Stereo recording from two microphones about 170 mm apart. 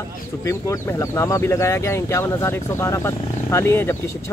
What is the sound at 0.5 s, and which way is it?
Speech, 15° left (ahead or behind).